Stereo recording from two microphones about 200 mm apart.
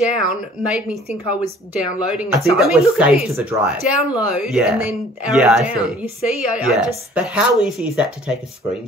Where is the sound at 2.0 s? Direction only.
Centre (ahead or behind).